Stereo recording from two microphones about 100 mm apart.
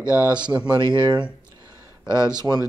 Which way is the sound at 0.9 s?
50° right (ahead or behind).